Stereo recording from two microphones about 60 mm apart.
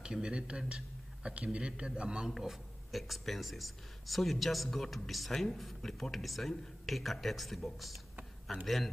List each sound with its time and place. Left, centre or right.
0.0 s speech: centre
2.3 s speech: centre